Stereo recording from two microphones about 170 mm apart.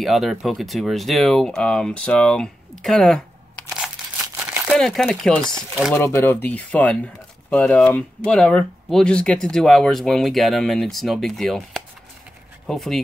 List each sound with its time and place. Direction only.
0.0 s speech: centre (ahead or behind)
2.8 s crumpling: 5° left (ahead or behind)
4.6 s speech: centre (ahead or behind)
5.9 s speech: 15° left (ahead or behind)